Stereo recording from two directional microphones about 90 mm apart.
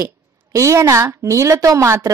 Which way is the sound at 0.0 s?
35° right (ahead or behind).